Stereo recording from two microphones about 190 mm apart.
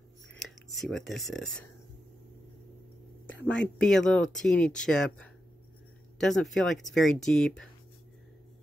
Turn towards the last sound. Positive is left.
turn(degrees=5)  # may be behind; listen again after turning